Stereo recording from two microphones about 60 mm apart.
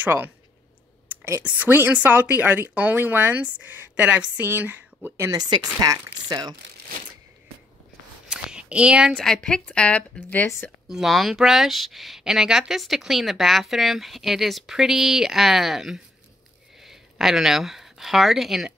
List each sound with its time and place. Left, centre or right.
0.0 s speech: right
1.4 s speech: right
4.5 s speech: right
8.3 s a sound: centre
9.1 s a woman's voice: centre
10.4 s speech: left
10.9 s speech: centre